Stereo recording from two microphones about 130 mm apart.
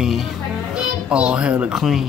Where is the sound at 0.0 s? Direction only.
5° right (ahead or behind).